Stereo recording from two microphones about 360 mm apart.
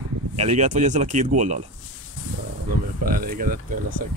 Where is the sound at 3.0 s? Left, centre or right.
Right.